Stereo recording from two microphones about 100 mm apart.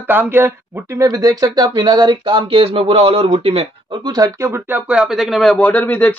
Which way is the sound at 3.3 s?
65° right (ahead or behind).